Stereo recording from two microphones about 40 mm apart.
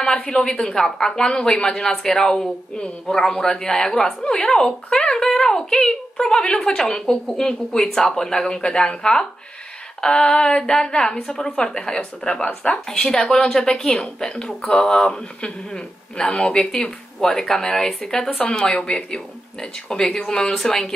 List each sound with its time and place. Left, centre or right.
0.5 s a woman's voice: centre
5.2 s a sound: centre
5.6 s a woman's voice: centre
14.0 s a woman's voice: left
18.2 s a woman's voice: left
18.5 s a woman's voice: centre